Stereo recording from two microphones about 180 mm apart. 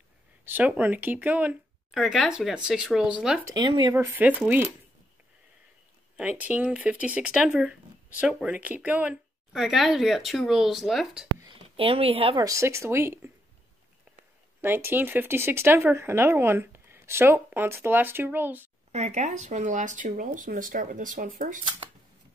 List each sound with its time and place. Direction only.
0.5 s a woman's voice: 10° right (ahead or behind)
3.4 s speech: 25° right (ahead or behind)
6.1 s a woman's voice: 10° right (ahead or behind)
11.4 s speech: 30° right (ahead or behind)
12.4 s speech: 15° right (ahead or behind)
14.6 s speech: 10° right (ahead or behind)
18.9 s speech: 40° right (ahead or behind)